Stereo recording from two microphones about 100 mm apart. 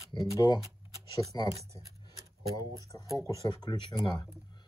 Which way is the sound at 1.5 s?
30° right (ahead or behind).